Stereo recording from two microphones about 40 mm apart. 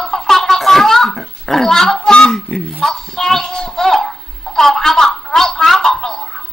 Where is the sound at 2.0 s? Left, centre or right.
Centre.